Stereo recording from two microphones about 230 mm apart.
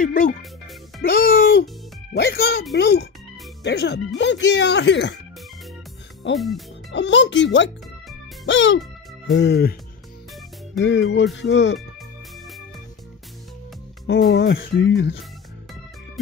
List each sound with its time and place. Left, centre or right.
0.0 s speech: left
6.3 s speech: centre
6.9 s speech: left
10.8 s speech: left
14.0 s speech: left